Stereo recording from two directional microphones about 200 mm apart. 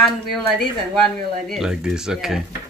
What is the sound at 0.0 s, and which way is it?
Speech, centre (ahead or behind).